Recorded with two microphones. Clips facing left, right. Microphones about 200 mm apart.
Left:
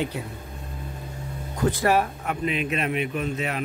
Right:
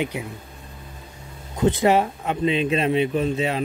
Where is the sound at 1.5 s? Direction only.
20° right (ahead or behind).